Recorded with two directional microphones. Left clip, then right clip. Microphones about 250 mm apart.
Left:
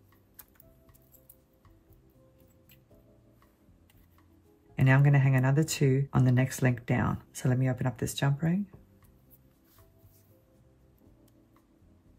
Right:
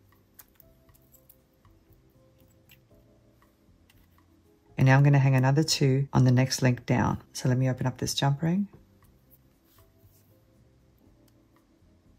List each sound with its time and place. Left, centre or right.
4.7 s speech: centre